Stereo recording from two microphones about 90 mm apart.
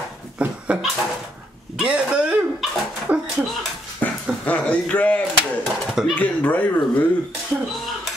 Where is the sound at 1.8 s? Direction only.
10° right (ahead or behind).